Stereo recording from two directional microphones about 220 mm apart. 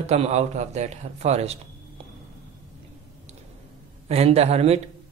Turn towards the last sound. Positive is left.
turn(degrees=-30)  # may be behind; listen again after turning